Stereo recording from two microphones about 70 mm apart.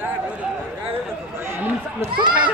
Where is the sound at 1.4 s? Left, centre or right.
Right.